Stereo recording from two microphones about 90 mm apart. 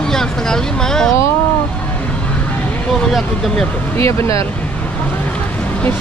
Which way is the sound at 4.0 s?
30° left (ahead or behind).